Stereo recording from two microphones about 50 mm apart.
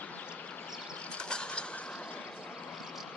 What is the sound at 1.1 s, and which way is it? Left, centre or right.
Mechanisms, centre.